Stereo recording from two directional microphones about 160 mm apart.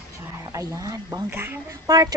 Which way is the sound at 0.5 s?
20° right (ahead or behind).